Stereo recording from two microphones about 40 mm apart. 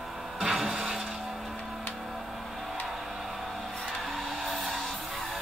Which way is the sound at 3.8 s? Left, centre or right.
Centre.